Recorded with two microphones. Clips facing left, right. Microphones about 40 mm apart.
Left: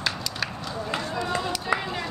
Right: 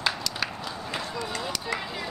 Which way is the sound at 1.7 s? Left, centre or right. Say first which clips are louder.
Left 7 dB; centre.